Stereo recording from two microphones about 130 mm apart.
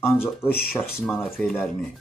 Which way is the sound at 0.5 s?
10° left (ahead or behind).